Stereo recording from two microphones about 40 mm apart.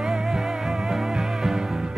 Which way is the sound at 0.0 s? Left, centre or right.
Centre.